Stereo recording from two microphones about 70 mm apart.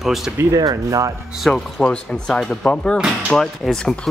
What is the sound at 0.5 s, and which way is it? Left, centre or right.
Speech, right.